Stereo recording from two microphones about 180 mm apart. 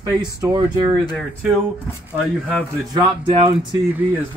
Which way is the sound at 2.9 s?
25° right (ahead or behind).